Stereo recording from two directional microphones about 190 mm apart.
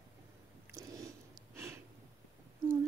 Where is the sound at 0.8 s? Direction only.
20° right (ahead or behind).